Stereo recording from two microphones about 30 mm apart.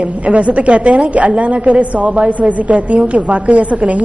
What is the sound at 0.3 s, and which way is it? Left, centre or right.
A woman's voice, right.